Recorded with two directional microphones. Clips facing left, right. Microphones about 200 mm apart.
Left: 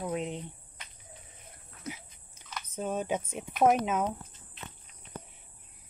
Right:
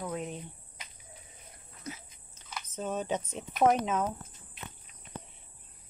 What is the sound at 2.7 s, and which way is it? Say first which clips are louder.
Speech: left 1 dB; 10° left (ahead or behind).